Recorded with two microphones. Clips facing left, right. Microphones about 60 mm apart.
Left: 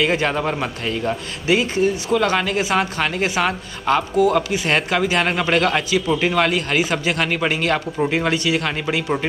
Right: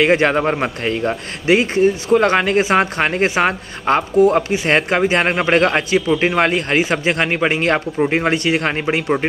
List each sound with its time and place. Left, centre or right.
0.0 s a man's voice: right